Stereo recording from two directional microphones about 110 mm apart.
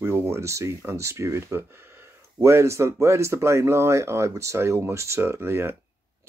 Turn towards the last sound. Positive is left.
turn(degrees=-20)  # may be behind; listen again after turning